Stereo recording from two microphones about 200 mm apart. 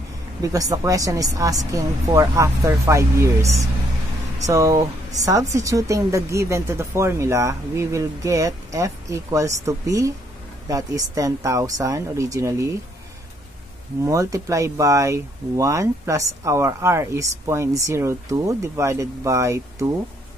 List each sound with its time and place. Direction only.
0.4 s speech: 15° right (ahead or behind)
14.0 s speech: 15° right (ahead or behind)